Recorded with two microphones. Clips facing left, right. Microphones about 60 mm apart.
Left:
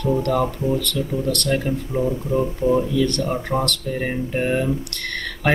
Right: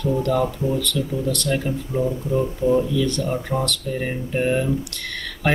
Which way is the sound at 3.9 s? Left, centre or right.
Centre.